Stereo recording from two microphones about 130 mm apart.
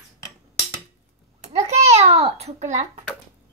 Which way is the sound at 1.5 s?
60° right (ahead or behind).